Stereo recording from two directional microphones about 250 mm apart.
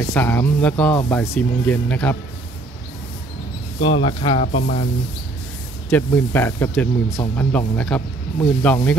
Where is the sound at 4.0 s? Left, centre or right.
Left.